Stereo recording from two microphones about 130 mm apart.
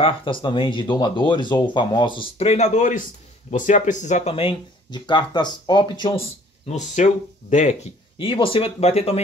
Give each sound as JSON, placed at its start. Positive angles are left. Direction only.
{"t": 0.0, "sound": "speech", "side_deg": 40}
{"t": 2.4, "sound": "speech", "side_deg": 60}
{"t": 6.7, "sound": "speech", "side_deg": 70}
{"t": 8.2, "sound": "speech", "side_deg": 40}